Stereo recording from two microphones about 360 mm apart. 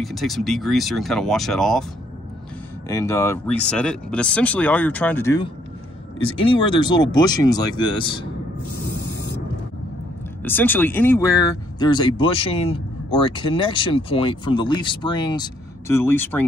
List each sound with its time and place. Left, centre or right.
0.0 s speech: centre
2.9 s speech: centre
9.1 s a sound: left
10.4 s speech: centre